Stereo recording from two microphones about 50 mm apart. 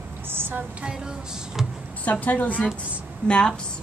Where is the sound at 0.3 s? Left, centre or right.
Right.